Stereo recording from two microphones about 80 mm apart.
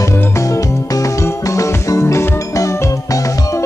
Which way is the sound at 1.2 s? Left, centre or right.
Left.